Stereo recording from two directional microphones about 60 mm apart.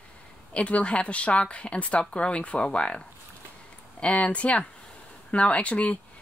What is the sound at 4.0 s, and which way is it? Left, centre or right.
Speech, left.